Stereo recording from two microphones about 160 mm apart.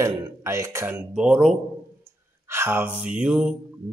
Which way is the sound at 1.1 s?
5° right (ahead or behind).